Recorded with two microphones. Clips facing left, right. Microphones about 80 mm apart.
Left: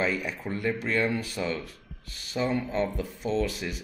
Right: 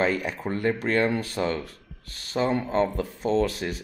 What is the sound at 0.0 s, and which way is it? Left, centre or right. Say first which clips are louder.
Speech: right 4 dB; right.